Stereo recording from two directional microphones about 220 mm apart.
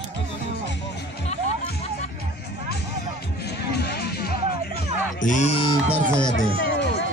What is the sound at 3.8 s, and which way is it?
Music, 50° left (ahead or behind).